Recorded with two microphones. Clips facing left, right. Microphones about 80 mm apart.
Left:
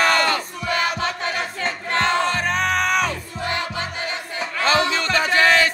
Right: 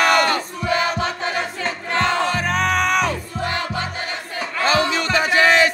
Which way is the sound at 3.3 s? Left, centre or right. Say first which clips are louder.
Right 2 dB; right.